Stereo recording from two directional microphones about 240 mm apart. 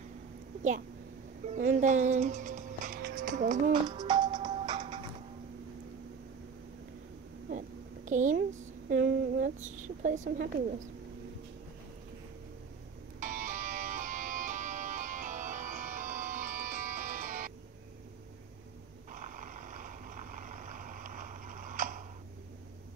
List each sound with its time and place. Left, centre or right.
0.6 s a woman's voice: right
3.8 s music: centre
7.4 s a sound: right
13.2 s music: right
19.1 s vehicle: right